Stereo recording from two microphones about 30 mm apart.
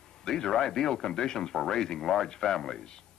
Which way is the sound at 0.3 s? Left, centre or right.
Centre.